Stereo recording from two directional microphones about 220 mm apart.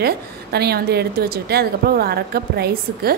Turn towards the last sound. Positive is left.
turn(degrees=-45)  # may be behind; listen again after turning